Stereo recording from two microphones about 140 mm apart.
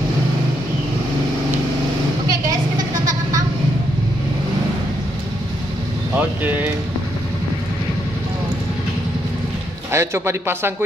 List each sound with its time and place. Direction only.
6.1 s a man's voice: 10° right (ahead or behind)
9.8 s a man's voice: 20° right (ahead or behind)